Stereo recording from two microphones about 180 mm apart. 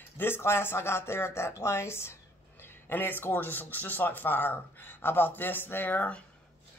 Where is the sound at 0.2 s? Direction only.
15° left (ahead or behind).